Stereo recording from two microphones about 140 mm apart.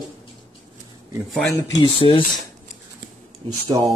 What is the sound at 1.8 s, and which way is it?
Speech, 40° left (ahead or behind).